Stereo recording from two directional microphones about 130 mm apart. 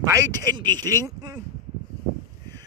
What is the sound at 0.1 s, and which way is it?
Speech, 25° right (ahead or behind).